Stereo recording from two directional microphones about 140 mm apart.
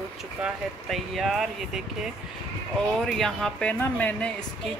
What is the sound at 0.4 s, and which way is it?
Speech, centre (ahead or behind).